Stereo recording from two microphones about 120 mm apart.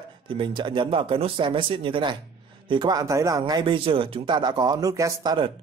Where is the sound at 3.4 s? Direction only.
40° right (ahead or behind).